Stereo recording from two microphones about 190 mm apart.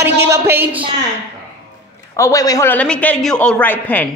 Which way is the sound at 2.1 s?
15° left (ahead or behind).